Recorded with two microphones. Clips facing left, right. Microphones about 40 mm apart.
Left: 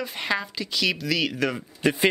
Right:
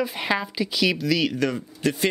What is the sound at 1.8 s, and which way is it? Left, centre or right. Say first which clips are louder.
Speech: left 2 dB; centre.